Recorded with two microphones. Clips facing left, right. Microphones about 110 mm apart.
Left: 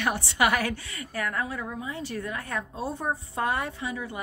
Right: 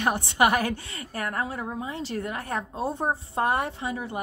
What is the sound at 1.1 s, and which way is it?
Speech, 30° right (ahead or behind).